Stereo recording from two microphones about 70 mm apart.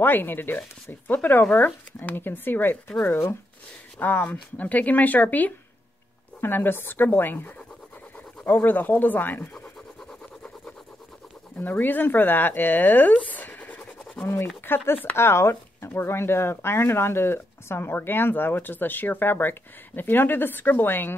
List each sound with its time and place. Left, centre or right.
0.0 s speech: left
11.6 s speech: left
14.2 s speech: left